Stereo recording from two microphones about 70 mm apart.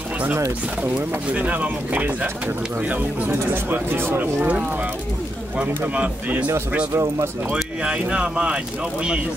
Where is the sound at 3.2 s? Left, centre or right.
Right.